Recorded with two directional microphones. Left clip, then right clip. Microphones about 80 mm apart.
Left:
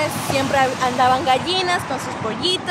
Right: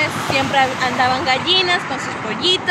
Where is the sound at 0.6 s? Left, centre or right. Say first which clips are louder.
Even; left.